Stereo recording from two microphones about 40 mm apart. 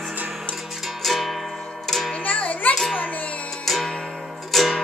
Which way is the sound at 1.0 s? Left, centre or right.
Centre.